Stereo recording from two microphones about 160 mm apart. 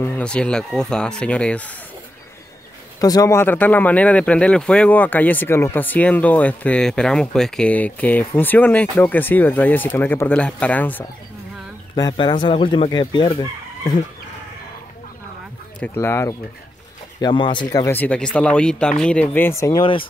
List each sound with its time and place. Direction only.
0.0 s speech: 10° left (ahead or behind)
3.0 s speech: 20° left (ahead or behind)
11.9 s speech: 30° left (ahead or behind)
15.8 s speech: 15° left (ahead or behind)
17.2 s speech: 30° left (ahead or behind)
19.8 s speech: 30° left (ahead or behind)